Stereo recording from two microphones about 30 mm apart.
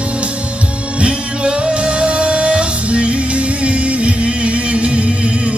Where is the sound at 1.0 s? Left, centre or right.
Right.